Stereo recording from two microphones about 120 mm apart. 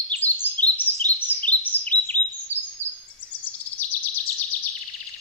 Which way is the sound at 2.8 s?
75° left (ahead or behind).